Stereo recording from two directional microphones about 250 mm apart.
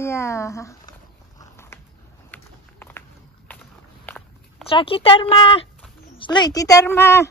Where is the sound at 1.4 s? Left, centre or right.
Centre.